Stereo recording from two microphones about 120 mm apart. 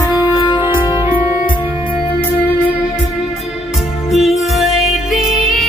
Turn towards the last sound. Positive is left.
turn(degrees=0)  # may be behind; listen again after turning